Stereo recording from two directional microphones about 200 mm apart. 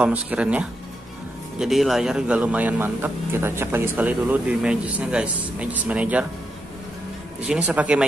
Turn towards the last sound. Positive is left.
turn(degrees=-5)  # may be behind; listen again after turning